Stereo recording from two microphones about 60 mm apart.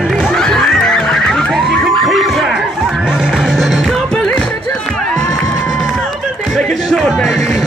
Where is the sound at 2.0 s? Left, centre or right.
Centre.